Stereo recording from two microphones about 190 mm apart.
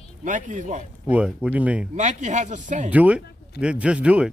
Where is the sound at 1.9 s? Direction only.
40° right (ahead or behind).